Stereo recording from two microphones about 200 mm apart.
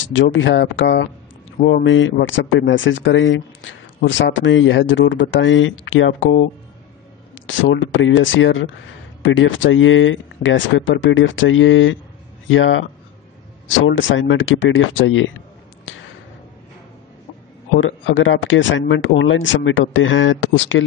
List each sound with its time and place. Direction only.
0.0 s speech: 70° left (ahead or behind)
17.7 s speech: 75° left (ahead or behind)